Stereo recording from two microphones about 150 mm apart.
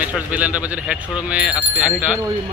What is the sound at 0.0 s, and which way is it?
Speech, 10° right (ahead or behind).